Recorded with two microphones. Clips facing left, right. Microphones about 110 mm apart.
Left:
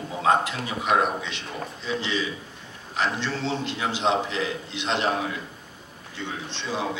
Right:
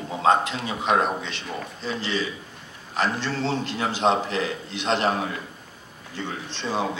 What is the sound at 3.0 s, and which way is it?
A man's voice, 40° right (ahead or behind).